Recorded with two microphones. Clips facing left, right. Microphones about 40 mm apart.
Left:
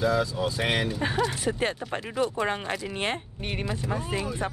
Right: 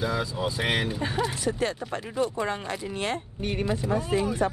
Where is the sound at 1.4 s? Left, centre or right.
Left.